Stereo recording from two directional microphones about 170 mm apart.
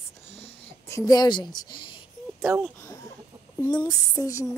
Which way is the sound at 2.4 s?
15° right (ahead or behind).